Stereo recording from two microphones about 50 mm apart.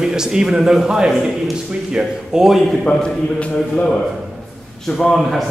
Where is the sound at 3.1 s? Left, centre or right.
Centre.